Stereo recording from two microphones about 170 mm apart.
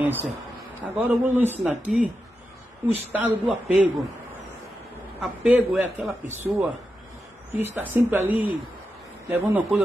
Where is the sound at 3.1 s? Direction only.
10° right (ahead or behind).